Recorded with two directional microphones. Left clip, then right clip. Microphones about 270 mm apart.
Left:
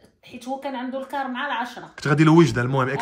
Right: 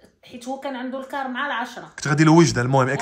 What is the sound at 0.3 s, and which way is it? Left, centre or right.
Speech, centre.